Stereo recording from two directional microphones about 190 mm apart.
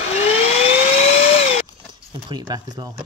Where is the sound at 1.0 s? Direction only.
40° left (ahead or behind).